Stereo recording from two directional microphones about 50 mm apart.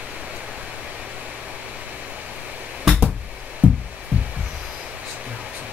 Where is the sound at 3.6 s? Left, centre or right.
Right.